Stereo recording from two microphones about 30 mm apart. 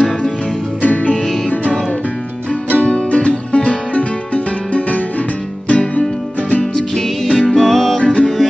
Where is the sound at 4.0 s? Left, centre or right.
Left.